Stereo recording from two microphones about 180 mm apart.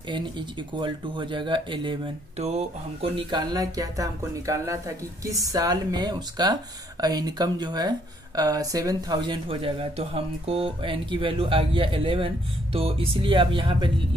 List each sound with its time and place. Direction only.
0.1 s speech: 25° right (ahead or behind)